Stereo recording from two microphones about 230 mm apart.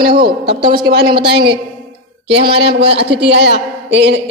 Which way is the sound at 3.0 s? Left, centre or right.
Right.